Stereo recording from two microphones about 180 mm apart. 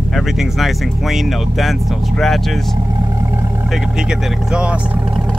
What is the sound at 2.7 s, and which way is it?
Vehicle, 20° right (ahead or behind).